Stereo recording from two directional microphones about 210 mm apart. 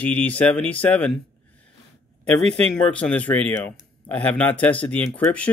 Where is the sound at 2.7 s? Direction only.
5° left (ahead or behind).